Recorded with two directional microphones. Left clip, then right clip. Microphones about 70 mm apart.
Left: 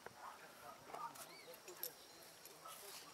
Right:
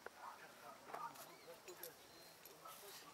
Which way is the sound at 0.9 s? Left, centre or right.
Centre.